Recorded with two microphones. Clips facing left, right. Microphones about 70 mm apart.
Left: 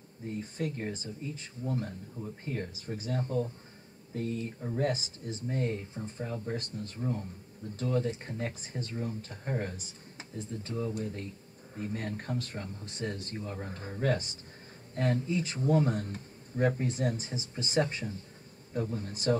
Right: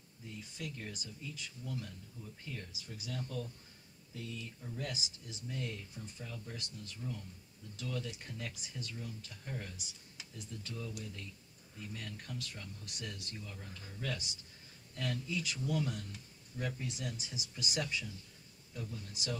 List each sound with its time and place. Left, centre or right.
0.2 s speech: left